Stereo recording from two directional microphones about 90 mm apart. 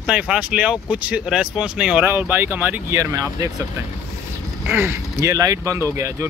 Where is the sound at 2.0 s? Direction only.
20° right (ahead or behind).